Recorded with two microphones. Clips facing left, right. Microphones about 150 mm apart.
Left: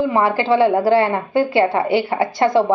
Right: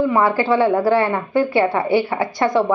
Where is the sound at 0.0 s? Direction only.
25° left (ahead or behind).